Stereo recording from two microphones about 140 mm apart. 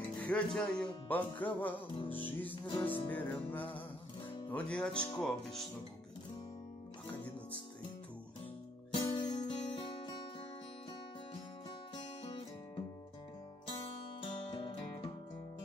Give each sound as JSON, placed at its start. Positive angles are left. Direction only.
{"t": 0.2, "sound": "music", "side_deg": 10}
{"t": 4.2, "sound": "guitar", "side_deg": 40}
{"t": 4.5, "sound": "music", "side_deg": 10}
{"t": 5.2, "sound": "speech", "side_deg": 5}
{"t": 8.9, "sound": "music", "side_deg": 30}
{"t": 12.0, "sound": "music", "side_deg": 45}
{"t": 13.7, "sound": "music", "side_deg": 35}